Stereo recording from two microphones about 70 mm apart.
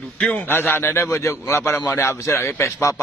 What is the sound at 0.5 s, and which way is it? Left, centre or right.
A man's voice, left.